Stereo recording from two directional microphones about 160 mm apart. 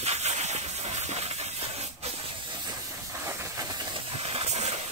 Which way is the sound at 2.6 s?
20° right (ahead or behind).